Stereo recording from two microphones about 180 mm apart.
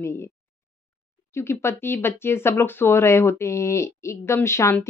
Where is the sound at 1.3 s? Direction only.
15° left (ahead or behind).